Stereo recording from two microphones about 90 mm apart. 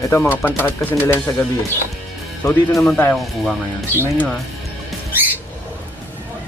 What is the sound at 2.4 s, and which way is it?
Speech, 35° left (ahead or behind).